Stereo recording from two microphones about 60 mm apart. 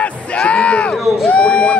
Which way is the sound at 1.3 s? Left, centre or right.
Centre.